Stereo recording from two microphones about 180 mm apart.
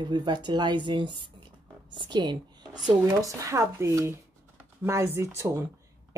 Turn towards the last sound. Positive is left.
turn(degrees=-15)  # may be behind; listen again after turning